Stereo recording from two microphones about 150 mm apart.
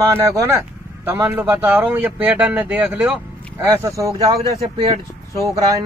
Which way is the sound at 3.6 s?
20° right (ahead or behind).